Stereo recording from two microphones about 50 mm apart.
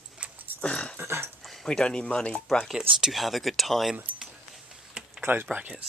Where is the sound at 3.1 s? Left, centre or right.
Centre.